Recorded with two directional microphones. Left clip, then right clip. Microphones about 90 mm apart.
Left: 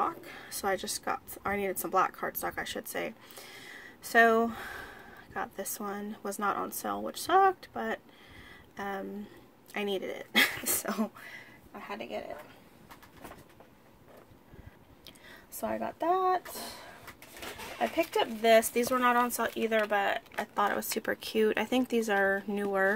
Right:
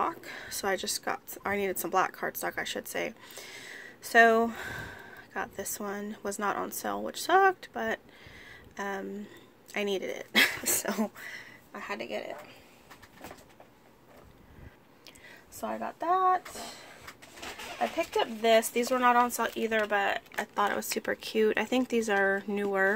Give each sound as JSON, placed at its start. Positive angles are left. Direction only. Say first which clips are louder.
{"t": 0.0, "sound": "speech", "louder": "right 1 dB", "side_deg": -30}
{"t": 8.5, "sound": "a sound", "louder": "right 2 dB", "side_deg": -25}
{"t": 9.7, "sound": "speech", "louder": "right 2 dB", "side_deg": -25}
{"t": 15.8, "sound": "speech", "louder": "right 2 dB", "side_deg": 45}
{"t": 18.1, "sound": "speech", "louder": "left 1 dB", "side_deg": 5}